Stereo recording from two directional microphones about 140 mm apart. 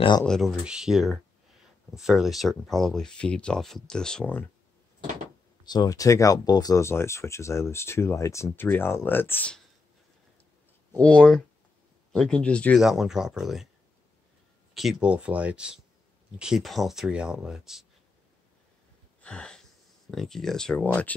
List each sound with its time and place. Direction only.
0.2 s speech: centre (ahead or behind)
5.7 s speech: 25° left (ahead or behind)
11.0 s speech: 10° left (ahead or behind)
12.8 s speech: centre (ahead or behind)
14.8 s speech: 5° right (ahead or behind)
19.2 s wheeze: 5° left (ahead or behind)
20.1 s speech: centre (ahead or behind)